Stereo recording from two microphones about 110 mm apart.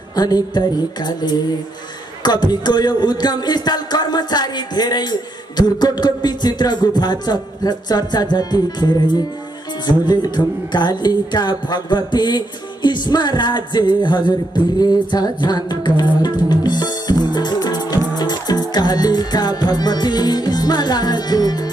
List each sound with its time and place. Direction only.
0.1 s speech: 35° left (ahead or behind)
14.8 s music: 35° left (ahead or behind)